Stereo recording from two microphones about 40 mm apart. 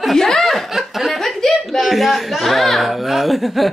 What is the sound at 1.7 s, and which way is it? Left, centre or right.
A woman's voice, centre.